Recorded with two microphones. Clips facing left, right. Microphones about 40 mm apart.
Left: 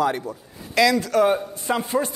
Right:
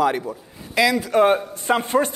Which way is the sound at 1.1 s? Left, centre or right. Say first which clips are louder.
Right 2 dB; right.